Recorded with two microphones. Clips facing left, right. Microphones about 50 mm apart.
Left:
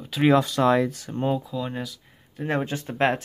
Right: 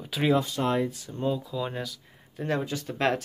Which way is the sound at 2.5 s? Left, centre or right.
Left.